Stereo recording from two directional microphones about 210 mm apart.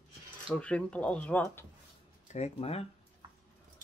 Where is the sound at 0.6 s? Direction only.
5° left (ahead or behind).